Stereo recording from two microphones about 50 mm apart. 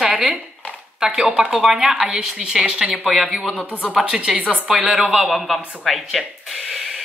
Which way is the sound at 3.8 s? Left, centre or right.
Centre.